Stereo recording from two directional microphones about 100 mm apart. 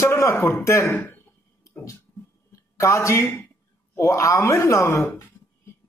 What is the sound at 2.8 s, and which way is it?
Speech, 30° left (ahead or behind).